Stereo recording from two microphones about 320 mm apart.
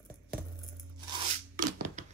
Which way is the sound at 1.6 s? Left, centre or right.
Right.